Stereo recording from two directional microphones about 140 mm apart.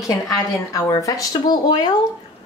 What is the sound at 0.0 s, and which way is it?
Speech, 25° left (ahead or behind).